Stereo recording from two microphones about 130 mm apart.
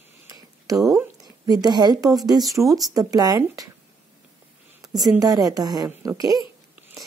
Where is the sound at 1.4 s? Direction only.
30° right (ahead or behind).